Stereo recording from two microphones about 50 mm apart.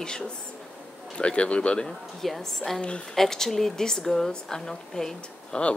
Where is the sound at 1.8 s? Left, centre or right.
Centre.